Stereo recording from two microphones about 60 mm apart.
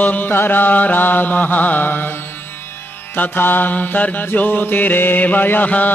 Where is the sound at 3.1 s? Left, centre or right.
Left.